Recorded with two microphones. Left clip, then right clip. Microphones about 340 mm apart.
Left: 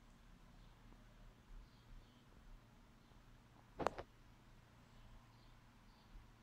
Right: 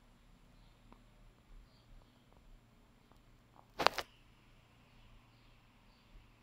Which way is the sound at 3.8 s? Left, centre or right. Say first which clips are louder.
Right 10 dB; right.